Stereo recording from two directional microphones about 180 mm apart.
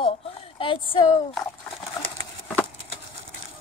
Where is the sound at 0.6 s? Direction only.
30° left (ahead or behind).